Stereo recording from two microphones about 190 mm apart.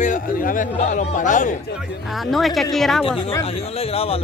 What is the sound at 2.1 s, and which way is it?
A woman's voice, centre (ahead or behind).